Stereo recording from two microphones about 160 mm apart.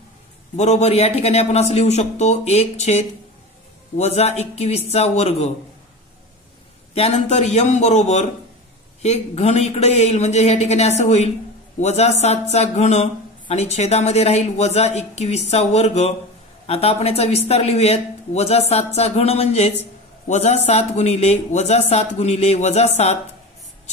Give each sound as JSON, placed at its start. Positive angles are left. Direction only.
{"t": 0.6, "sound": "a man's voice", "side_deg": 45}
{"t": 6.9, "sound": "a man's voice", "side_deg": 40}